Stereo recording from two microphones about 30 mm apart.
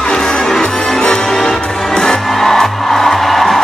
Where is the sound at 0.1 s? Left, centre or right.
Left.